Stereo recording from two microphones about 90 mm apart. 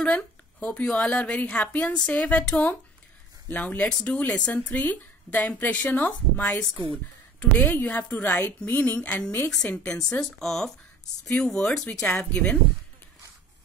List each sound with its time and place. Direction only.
0.0 s a woman's voice: 15° left (ahead or behind)